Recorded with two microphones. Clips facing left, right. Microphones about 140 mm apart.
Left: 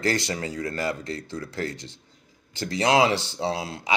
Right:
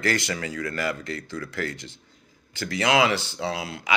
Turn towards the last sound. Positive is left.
turn(degrees=35)  # may be behind; listen again after turning